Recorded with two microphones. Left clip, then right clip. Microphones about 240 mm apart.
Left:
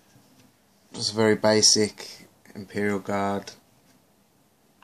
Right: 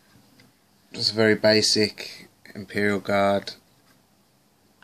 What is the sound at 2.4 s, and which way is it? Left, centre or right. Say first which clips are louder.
Speech: right 3 dB; centre.